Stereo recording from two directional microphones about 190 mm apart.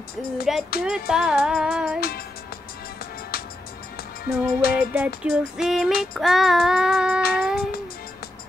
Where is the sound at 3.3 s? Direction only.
55° left (ahead or behind).